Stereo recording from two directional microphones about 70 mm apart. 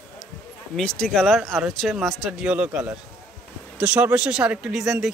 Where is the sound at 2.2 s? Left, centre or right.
Centre.